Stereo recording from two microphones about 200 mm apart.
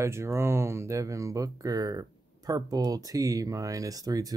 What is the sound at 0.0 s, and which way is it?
Speech, 15° right (ahead or behind).